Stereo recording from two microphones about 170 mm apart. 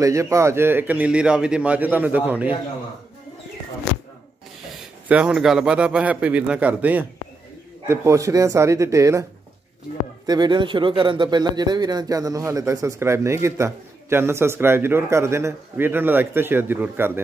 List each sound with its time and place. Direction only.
0.0 s a man's voice: 20° right (ahead or behind)
5.0 s a man's voice: 10° right (ahead or behind)
10.2 s a man's voice: 25° right (ahead or behind)